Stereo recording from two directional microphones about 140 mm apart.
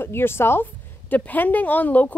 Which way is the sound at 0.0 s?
15° left (ahead or behind).